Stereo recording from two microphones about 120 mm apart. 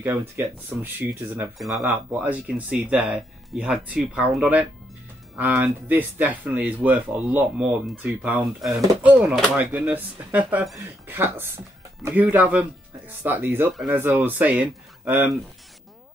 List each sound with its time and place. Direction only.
0.7 s speech: 15° right (ahead or behind)
1.6 s speech: centre (ahead or behind)
2.1 s speech: 10° right (ahead or behind)
8.5 s speech: centre (ahead or behind)
9.0 s speech: 15° right (ahead or behind)